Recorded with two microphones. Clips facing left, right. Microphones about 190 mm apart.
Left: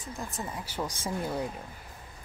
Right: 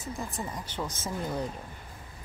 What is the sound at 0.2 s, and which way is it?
Speech, centre (ahead or behind).